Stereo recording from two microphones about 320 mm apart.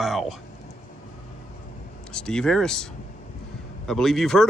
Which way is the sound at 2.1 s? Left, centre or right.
Centre.